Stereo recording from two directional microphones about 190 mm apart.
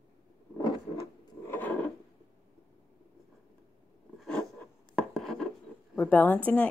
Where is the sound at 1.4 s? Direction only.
10° left (ahead or behind).